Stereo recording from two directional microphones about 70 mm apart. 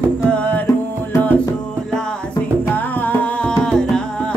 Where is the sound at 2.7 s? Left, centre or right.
Left.